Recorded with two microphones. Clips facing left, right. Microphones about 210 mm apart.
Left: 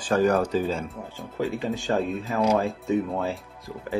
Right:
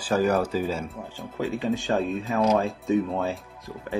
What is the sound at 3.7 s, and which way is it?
Speech, centre (ahead or behind).